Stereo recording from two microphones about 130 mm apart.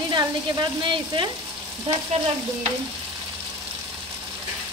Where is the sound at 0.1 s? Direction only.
35° right (ahead or behind).